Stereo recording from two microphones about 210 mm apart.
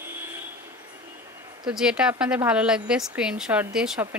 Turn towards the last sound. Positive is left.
turn(degrees=-5)  # may be behind; listen again after turning